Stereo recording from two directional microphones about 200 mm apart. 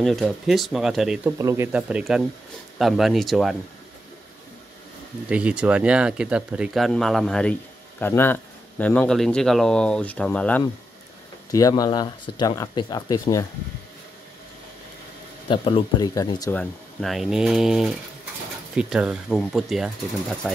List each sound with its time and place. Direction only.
0.0 s speech: centre (ahead or behind)
1.4 s speech: 15° right (ahead or behind)
5.3 s speech: 5° right (ahead or behind)
11.5 s speech: 20° left (ahead or behind)
15.4 s speech: 25° left (ahead or behind)
16.5 s speech: centre (ahead or behind)